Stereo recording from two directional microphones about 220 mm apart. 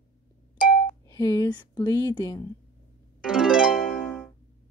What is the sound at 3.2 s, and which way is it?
Harp, 5° right (ahead or behind).